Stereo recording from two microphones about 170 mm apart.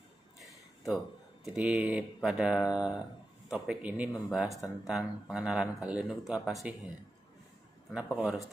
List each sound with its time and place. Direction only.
0.4 s speech: centre (ahead or behind)
7.9 s speech: 5° right (ahead or behind)